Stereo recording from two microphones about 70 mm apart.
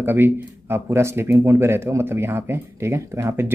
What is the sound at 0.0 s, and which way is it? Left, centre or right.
Speech, right.